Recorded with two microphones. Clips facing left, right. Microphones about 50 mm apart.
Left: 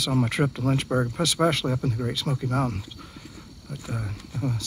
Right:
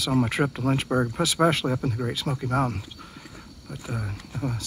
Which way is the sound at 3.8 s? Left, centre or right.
Centre.